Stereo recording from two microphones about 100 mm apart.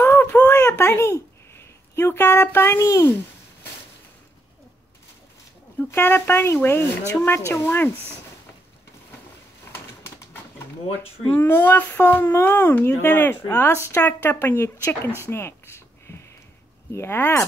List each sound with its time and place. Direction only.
0.0 s a sound: 20° left (ahead or behind)
5.8 s speech: 20° left (ahead or behind)
11.2 s speech: 20° left (ahead or behind)